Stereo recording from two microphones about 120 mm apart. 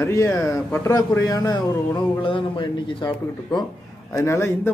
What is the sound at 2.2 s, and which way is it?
Speech, 45° left (ahead or behind).